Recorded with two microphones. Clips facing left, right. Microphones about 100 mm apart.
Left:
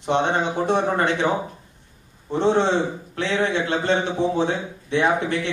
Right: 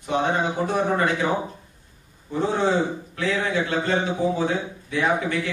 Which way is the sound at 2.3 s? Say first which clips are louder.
Left 3 dB; 30° left (ahead or behind).